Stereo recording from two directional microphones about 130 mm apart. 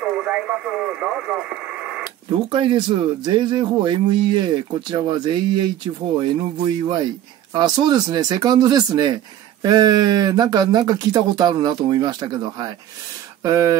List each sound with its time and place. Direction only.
0.0 s speech: 10° right (ahead or behind)
2.5 s speech: 40° right (ahead or behind); by 13.7 s 25° right (ahead or behind)